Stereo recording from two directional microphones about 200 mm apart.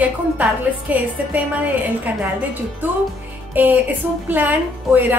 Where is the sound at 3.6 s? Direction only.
10° right (ahead or behind).